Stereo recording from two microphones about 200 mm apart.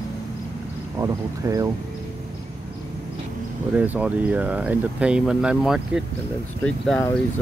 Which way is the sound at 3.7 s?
10° right (ahead or behind).